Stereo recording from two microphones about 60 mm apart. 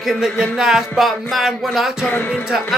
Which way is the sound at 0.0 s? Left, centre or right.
Centre.